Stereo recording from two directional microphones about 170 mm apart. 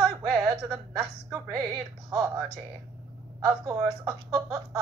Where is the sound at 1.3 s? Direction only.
20° right (ahead or behind).